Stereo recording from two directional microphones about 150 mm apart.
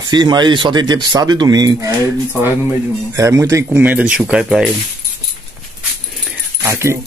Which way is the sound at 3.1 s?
20° right (ahead or behind).